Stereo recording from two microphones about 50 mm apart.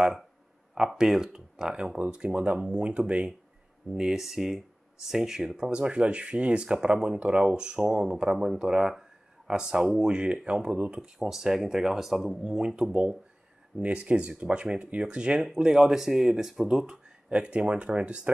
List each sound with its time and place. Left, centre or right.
0.7 s speech: centre; by 3.3 s right
3.9 s speech: centre
10.1 s speech: right
11.1 s speech: centre